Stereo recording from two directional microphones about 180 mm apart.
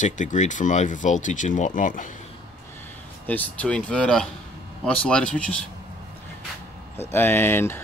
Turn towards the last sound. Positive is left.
turn(degrees=15)  # may be behind; listen again after turning